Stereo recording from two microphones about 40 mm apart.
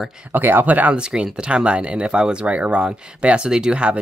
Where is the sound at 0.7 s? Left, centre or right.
Right.